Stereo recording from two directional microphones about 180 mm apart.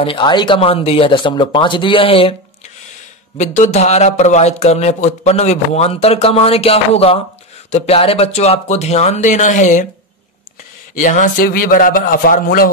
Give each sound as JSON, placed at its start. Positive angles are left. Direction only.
{"t": 0.0, "sound": "speech", "side_deg": 30}
{"t": 3.3, "sound": "speech", "side_deg": 40}
{"t": 11.0, "sound": "a man's voice", "side_deg": 45}